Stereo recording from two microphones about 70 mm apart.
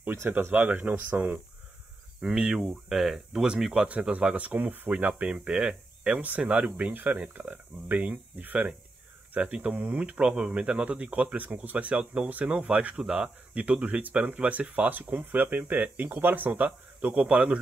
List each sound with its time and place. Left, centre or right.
0.0 s speech: right
2.2 s speech: centre